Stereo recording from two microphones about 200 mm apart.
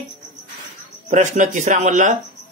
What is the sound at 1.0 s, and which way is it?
Speech, 40° right (ahead or behind).